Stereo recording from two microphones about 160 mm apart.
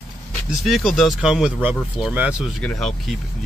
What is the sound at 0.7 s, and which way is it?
Speech, centre (ahead or behind).